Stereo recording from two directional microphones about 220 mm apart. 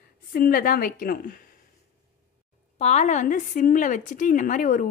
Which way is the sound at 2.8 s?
30° left (ahead or behind).